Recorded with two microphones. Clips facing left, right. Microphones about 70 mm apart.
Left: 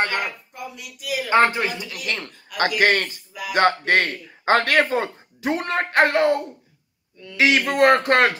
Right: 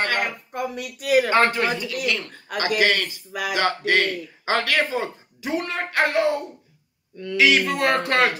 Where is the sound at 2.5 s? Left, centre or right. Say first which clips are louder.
Left 2 dB; left.